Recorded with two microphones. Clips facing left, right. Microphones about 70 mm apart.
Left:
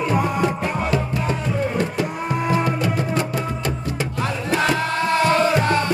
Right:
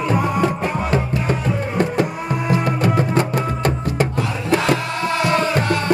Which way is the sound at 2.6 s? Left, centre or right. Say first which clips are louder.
Right 3 dB; right.